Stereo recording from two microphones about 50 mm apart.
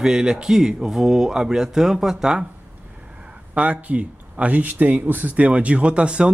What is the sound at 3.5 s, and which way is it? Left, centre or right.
Speech, right.